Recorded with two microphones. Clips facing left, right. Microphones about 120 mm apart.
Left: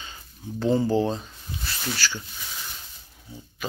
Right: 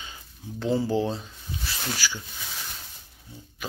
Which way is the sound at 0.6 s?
5° right (ahead or behind).